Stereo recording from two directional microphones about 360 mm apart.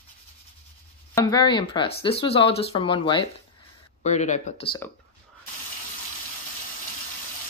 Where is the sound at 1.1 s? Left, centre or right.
Centre.